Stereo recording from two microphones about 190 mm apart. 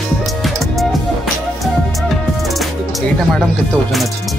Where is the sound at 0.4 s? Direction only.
Centre (ahead or behind).